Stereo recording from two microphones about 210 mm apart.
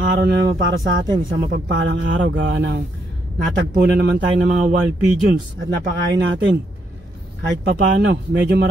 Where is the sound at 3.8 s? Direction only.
50° right (ahead or behind).